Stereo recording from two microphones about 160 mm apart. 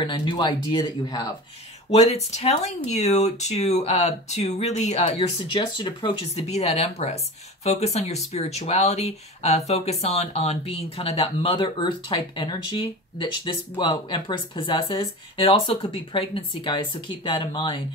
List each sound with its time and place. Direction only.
0.0 s speech: 30° left (ahead or behind)
1.9 s speech: 40° left (ahead or behind)